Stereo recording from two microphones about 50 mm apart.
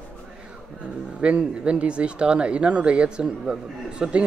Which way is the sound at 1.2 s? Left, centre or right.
Right.